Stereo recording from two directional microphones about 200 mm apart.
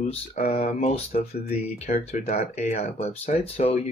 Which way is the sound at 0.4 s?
40° left (ahead or behind).